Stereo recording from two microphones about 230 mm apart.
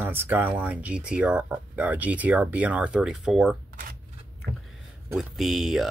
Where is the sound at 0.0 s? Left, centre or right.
Centre.